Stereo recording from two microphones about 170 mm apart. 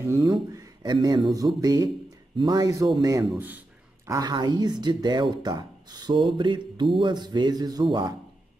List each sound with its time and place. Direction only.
0.0 s speech: 15° right (ahead or behind)
0.5 s a sound: 20° right (ahead or behind)
0.9 s speech: 30° right (ahead or behind); by 3.5 s 10° right (ahead or behind)
4.1 s speech: 20° right (ahead or behind)